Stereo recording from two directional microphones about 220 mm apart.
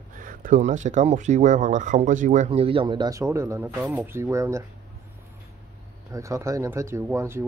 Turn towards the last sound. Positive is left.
turn(degrees=-10)  # may be behind; listen again after turning